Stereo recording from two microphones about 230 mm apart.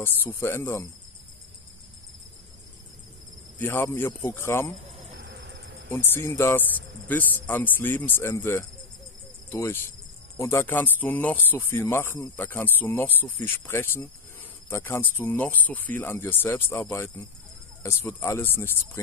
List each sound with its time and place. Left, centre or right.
0.0 s speech: centre
3.5 s speech: centre
4.8 s cricket: right
5.2 s a sound: right
5.9 s speech: centre